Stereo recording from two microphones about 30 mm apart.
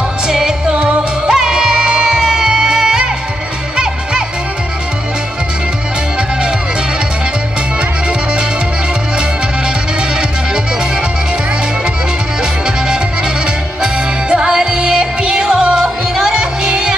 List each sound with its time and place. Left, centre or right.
0.3 s music: right
0.7 s music: right
1.2 s music: right
14.3 s music: right
15.8 s music: centre
16.3 s music: right